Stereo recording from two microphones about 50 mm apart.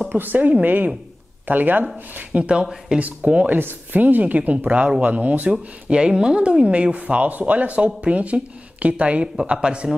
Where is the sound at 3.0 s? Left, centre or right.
Right.